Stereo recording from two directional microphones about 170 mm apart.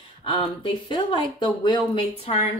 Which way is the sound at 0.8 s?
30° left (ahead or behind).